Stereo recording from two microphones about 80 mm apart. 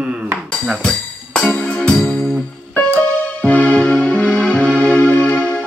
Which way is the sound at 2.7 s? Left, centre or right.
Left.